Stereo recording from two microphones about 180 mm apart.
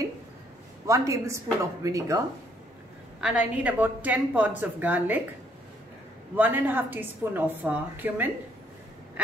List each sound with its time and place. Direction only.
0.8 s a woman's voice: 15° right (ahead or behind)
3.2 s a woman's voice: 5° right (ahead or behind)
6.3 s a woman's voice: 10° right (ahead or behind)